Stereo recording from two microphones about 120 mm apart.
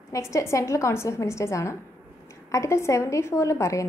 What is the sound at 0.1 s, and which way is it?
A woman's voice, 25° left (ahead or behind).